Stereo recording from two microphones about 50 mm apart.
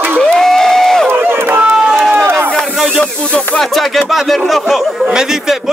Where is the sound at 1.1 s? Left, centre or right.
Right.